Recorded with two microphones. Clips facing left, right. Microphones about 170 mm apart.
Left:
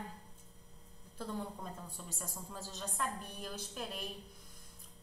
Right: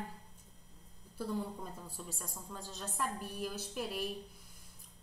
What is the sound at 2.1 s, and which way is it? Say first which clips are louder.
A woman's voice: even; centre (ahead or behind).